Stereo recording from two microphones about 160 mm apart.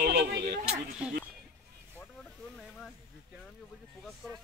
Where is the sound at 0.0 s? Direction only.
85° right.